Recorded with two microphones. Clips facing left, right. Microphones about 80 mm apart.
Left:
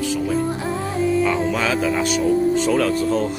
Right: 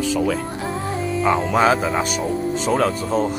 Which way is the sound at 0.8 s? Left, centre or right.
Centre.